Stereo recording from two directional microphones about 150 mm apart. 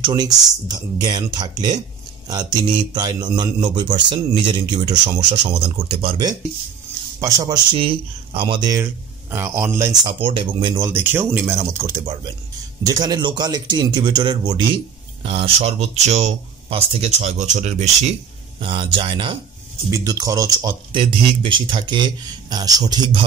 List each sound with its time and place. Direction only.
0.0 s speech: 25° right (ahead or behind)
5.4 s speech: 40° right (ahead or behind)
7.2 s speech: 20° right (ahead or behind)
8.6 s speech: 15° right (ahead or behind)
10.0 s speech: 35° right (ahead or behind)
10.8 s speech: 15° right (ahead or behind)
15.2 s speech: 40° right (ahead or behind)
18.6 s speech: 35° right (ahead or behind)
19.9 s speech: 25° right (ahead or behind)